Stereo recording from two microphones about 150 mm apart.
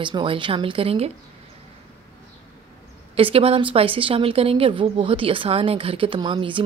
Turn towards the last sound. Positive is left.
turn(degrees=-35)  # may be behind; listen again after turning